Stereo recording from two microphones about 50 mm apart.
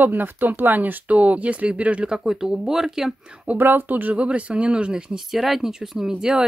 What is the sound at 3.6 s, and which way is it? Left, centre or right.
Speech, right.